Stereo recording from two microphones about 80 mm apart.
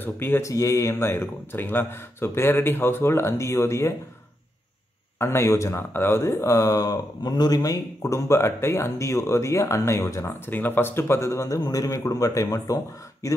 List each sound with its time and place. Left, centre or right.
0.0 s speech: left
0.5 s speech: left
5.2 s speech: left